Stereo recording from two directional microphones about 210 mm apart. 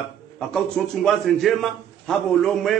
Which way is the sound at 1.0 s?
Centre (ahead or behind).